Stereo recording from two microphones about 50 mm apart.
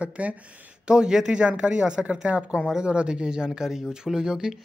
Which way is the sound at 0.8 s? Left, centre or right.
Centre.